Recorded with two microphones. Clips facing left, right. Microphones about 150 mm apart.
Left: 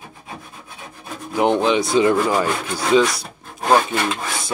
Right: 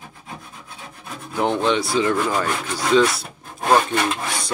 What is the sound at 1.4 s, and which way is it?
Speech, 15° left (ahead or behind).